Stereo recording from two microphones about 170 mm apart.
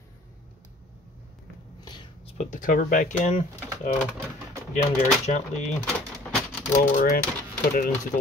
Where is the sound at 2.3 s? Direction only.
50° left (ahead or behind).